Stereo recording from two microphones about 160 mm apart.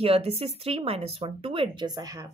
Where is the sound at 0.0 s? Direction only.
40° right (ahead or behind).